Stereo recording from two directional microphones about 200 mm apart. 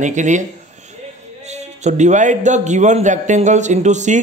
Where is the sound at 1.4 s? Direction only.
35° right (ahead or behind).